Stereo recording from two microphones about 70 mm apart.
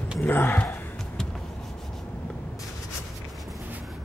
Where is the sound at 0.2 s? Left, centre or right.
Left.